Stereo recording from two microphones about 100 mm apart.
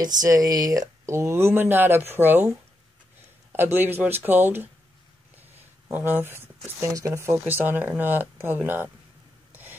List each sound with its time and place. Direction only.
0.0 s speech: 40° right (ahead or behind); by 2.5 s 20° right (ahead or behind)
3.5 s speech: 20° right (ahead or behind)
5.9 s speech: 20° right (ahead or behind)
9.5 s a sound: 20° right (ahead or behind)